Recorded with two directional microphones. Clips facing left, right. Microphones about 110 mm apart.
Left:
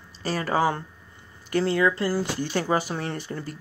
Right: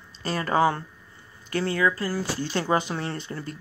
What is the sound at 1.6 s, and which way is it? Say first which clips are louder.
Speech: left 2 dB; 25° left (ahead or behind).